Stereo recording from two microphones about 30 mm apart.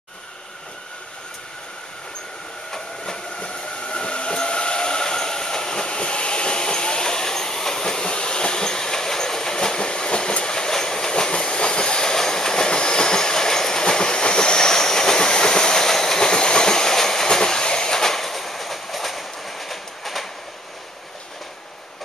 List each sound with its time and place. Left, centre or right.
3.3 s vehicle: left; by 16.3 s centre
16.3 s train: left; by 20.2 s centre